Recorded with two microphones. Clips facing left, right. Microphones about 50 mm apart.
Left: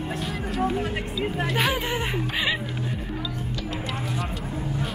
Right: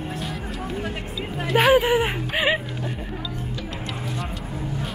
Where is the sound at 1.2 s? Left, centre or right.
Centre.